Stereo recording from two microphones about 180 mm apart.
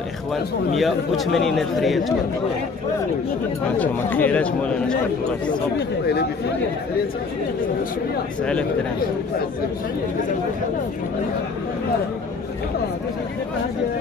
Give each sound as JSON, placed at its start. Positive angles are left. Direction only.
{"t": 0.3, "sound": "speech", "side_deg": 0}
{"t": 3.7, "sound": "speech", "side_deg": 10}
{"t": 5.8, "sound": "speech", "side_deg": 65}